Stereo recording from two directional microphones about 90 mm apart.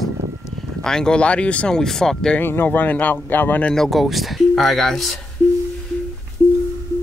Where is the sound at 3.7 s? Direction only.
5° left (ahead or behind).